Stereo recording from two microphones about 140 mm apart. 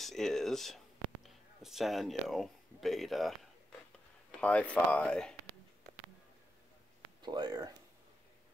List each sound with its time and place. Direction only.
0.0 s speech: 5° left (ahead or behind)
4.4 s speech: 10° left (ahead or behind)
7.2 s speech: 30° right (ahead or behind)